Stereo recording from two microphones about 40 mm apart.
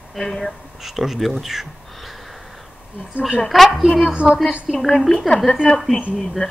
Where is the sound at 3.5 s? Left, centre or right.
Centre.